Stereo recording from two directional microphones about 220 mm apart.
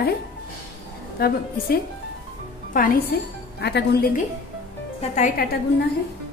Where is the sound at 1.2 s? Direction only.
45° left (ahead or behind).